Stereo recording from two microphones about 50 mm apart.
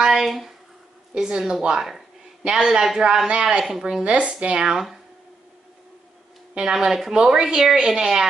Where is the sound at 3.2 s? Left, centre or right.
Centre.